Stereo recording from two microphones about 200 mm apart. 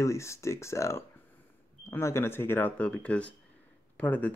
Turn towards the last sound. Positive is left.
turn(degrees=5)  # may be behind; listen again after turning